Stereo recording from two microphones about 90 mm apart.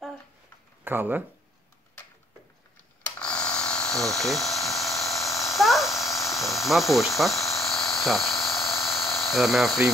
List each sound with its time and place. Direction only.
0.8 s speech: 25° right (ahead or behind)
3.2 s electric toothbrush: 10° left (ahead or behind)
6.4 s speech: centre (ahead or behind)
7.2 s electric toothbrush: centre (ahead or behind)